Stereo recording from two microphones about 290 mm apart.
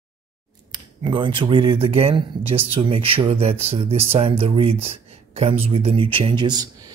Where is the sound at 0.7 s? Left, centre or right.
Centre.